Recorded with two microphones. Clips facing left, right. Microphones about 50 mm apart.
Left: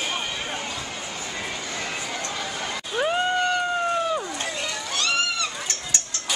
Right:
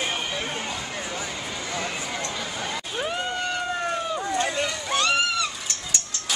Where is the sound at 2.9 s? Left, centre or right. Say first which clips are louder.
Left 7 dB; centre.